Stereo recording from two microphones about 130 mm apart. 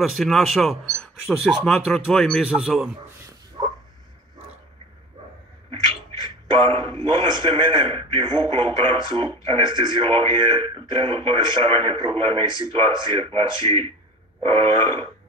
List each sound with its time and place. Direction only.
0.1 s speech: centre (ahead or behind)
3.6 s a sound: 45° right (ahead or behind)
6.5 s a man's voice: 45° right (ahead or behind)